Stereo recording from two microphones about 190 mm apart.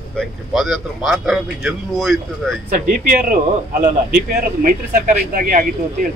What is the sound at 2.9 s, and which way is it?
Speech, 45° right (ahead or behind).